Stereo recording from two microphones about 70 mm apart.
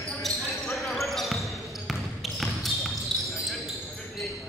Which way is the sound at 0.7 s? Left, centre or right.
Centre.